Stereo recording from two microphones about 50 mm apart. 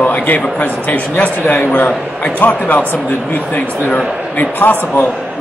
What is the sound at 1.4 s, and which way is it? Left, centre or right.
Speech, left.